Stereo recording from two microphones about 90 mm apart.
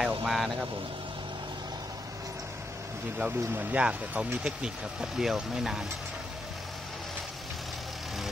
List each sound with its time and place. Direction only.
0.0 s vehicle: 5° right (ahead or behind)
3.2 s speech: 15° right (ahead or behind)